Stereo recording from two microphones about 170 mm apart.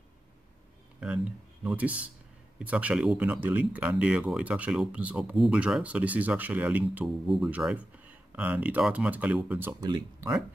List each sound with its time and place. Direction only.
1.0 s speech: 5° right (ahead or behind)
9.8 s speech: 25° right (ahead or behind)